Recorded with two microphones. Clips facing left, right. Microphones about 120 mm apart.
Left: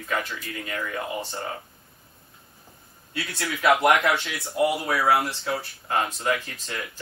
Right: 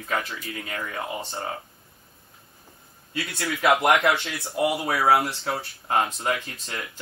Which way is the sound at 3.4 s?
25° right (ahead or behind).